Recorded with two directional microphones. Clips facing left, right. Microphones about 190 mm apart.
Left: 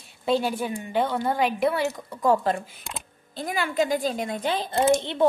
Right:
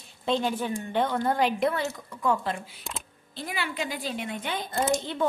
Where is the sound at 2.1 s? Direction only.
35° left (ahead or behind).